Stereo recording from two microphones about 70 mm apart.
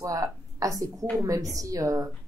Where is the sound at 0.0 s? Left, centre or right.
Right.